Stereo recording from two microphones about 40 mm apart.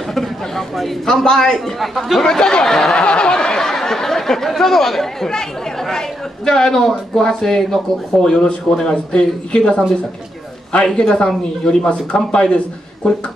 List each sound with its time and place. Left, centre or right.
0.1 s speech: centre
1.0 s a man's voice: centre
1.8 s speech: centre
2.2 s a man's voice: centre
2.9 s a man's voice: left
11.2 s speech: left